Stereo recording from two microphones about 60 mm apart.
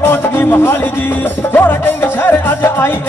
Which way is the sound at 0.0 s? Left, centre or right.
Left.